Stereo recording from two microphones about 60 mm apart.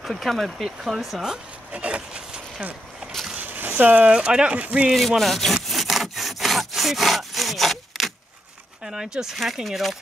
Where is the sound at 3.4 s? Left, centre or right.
Right.